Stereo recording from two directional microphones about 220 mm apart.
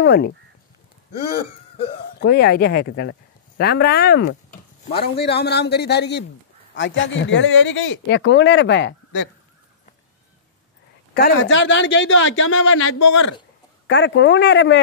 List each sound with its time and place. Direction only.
0.0 s speech: 50° left (ahead or behind)
1.9 s speech: 50° left (ahead or behind)
11.4 s speech: 55° left (ahead or behind); by 13.3 s 70° left (ahead or behind)
13.8 s speech: 55° left (ahead or behind)